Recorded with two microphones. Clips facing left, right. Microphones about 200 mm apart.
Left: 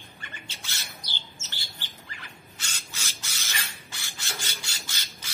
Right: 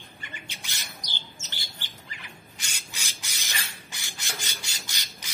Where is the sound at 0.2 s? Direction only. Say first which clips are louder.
Right 1 dB; 15° right (ahead or behind).